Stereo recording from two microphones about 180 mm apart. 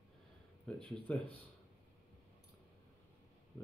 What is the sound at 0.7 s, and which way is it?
Speech, 30° right (ahead or behind).